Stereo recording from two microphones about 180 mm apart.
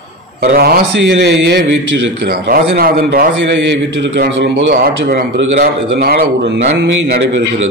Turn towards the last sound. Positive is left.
turn(degrees=-85)